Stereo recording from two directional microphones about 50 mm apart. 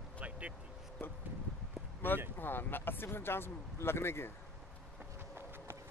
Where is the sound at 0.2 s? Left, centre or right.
Right.